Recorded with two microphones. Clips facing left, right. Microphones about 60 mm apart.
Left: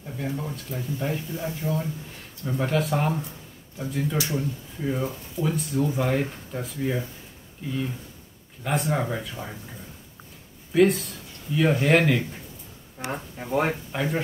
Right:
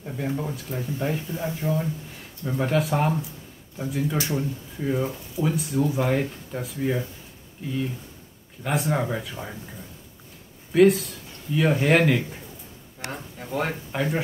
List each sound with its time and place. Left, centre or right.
0.0 s speech: centre
8.6 s speech: centre
10.7 s speech: centre
13.0 s speech: centre
13.9 s speech: centre